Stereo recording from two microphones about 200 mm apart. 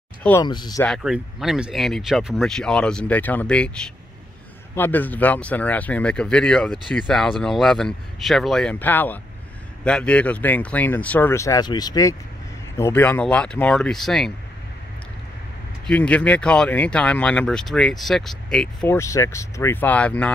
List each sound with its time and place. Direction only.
0.4 s speech: 20° left (ahead or behind)
0.8 s speech: centre (ahead or behind)
15.9 s speech: 5° left (ahead or behind)
18.9 s speech: 15° left (ahead or behind)